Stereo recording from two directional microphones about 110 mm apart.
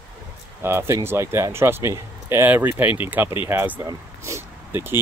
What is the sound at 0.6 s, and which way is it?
Speech, 25° right (ahead or behind).